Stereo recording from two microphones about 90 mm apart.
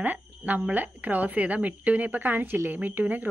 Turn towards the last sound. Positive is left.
turn(degrees=-20)  # may be behind; listen again after turning